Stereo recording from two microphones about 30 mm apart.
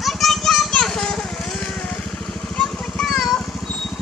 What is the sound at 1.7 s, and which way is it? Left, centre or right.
Vehicle, left.